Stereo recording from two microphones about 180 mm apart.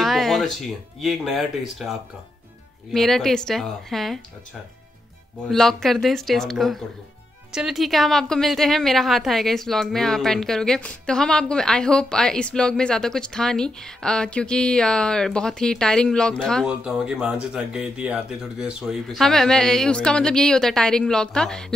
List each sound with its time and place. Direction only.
0.0 s music: centre (ahead or behind)
1.0 s a woman's voice: centre (ahead or behind)
5.5 s a woman's voice: centre (ahead or behind)